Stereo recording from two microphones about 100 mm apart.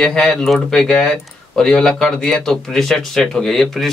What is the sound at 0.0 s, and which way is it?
Speech, 5° left (ahead or behind).